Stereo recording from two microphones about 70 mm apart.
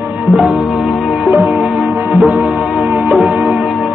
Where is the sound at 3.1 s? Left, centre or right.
Centre.